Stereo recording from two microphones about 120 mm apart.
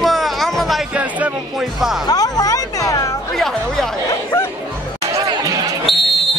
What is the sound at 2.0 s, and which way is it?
Speech, 30° left (ahead or behind).